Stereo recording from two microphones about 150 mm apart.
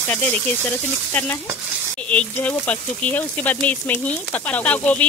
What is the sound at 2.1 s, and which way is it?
Speech, 10° left (ahead or behind).